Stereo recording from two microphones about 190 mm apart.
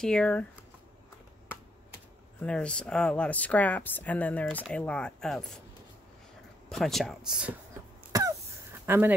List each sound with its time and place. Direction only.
0.0 s speech: 5° left (ahead or behind)
2.4 s speech: 5° left (ahead or behind)
6.7 s speech: centre (ahead or behind)
8.1 s throat clearing: 20° right (ahead or behind)
8.8 s speech: 10° right (ahead or behind)